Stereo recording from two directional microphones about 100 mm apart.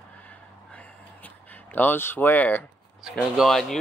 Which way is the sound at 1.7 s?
20° left (ahead or behind).